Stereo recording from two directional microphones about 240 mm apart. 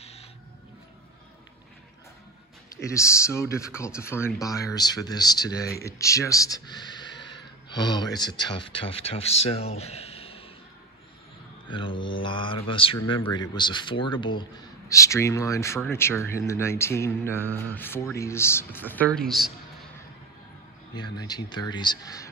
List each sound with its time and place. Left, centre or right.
2.7 s speech: centre
11.7 s mantra: left
13.2 s a man's voice: centre
20.9 s speech: centre